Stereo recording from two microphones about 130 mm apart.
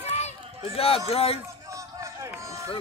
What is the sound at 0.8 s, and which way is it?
Speech, 50° left (ahead or behind).